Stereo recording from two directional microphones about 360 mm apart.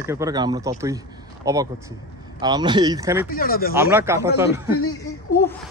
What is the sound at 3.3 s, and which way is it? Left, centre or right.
Speech, left.